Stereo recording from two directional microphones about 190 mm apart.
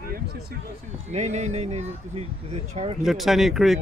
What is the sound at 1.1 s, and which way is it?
Speech, 35° right (ahead or behind).